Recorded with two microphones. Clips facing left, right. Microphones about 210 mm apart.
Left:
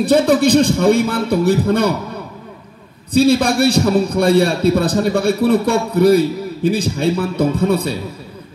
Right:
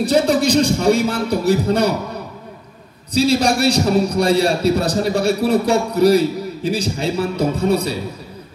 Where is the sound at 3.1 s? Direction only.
55° left (ahead or behind).